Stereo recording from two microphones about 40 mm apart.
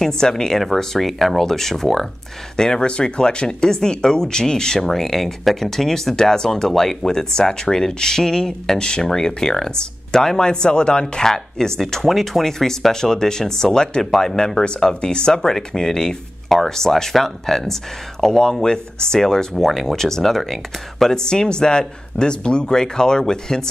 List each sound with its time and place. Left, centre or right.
0.0 s speech: centre